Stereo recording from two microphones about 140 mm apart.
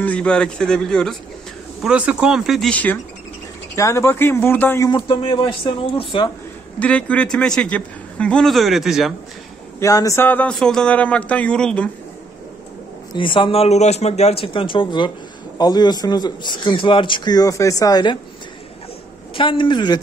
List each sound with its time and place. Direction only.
0.0 s a man's voice: 10° left (ahead or behind)
1.8 s a man's voice: 5° right (ahead or behind)
2.7 s a man's voice: 10° left (ahead or behind)
3.7 s a man's voice: 20° left (ahead or behind)
4.9 s speech: 35° left (ahead or behind)
6.8 s a man's voice: 10° left (ahead or behind)
9.8 s a man's voice: 25° left (ahead or behind); by 11.9 s 5° left (ahead or behind)
13.1 s speech: 35° left (ahead or behind)
19.3 s speech: 35° left (ahead or behind)